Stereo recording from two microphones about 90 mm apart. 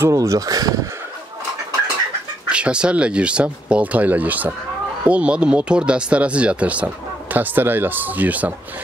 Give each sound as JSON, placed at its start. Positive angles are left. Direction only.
{"t": 0.0, "sound": "speech", "side_deg": -35}
{"t": 2.5, "sound": "speech", "side_deg": -10}